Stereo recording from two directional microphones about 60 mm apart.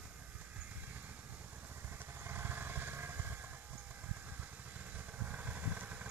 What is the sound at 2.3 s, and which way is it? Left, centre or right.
Motorcycle, right.